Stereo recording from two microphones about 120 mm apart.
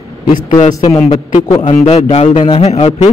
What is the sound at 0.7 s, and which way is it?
Speech, 30° left (ahead or behind).